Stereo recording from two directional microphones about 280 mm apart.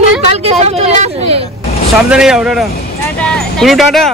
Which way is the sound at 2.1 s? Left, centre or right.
Centre.